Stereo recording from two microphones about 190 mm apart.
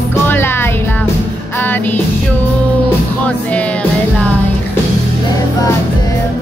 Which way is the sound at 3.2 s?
5° left (ahead or behind).